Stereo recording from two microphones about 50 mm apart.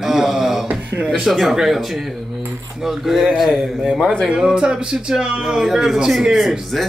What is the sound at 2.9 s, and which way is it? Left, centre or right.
Speech, centre.